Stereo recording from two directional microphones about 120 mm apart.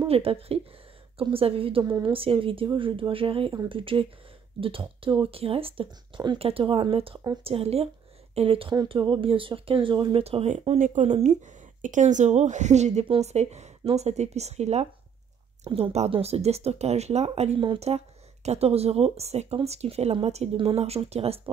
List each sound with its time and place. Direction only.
0.0 s speech: 50° right (ahead or behind)
1.9 s a woman's voice: 30° right (ahead or behind)
2.1 s speech: 50° right (ahead or behind)